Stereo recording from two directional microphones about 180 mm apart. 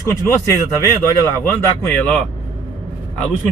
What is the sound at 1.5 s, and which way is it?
Speech, 10° left (ahead or behind).